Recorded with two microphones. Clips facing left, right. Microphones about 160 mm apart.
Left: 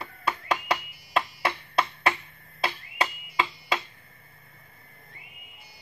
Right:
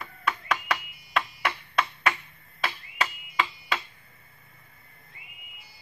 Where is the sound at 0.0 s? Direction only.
30° left (ahead or behind).